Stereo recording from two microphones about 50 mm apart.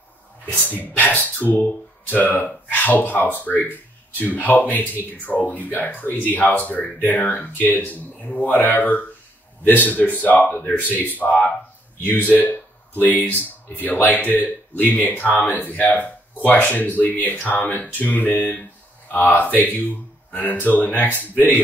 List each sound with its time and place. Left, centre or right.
0.5 s speech: left
19.1 s speech: left